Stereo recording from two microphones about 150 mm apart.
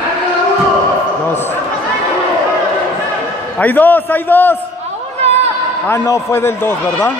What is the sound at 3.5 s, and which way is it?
A man's voice, 10° left (ahead or behind).